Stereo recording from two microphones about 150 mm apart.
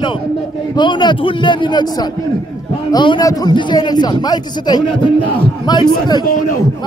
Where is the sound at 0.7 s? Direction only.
30° left (ahead or behind).